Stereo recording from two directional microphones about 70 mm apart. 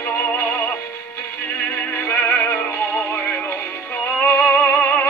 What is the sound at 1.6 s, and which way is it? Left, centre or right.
Music, left.